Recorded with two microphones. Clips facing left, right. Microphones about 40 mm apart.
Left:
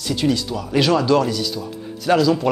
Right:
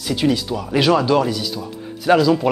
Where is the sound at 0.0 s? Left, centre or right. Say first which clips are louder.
Right 1 dB; centre.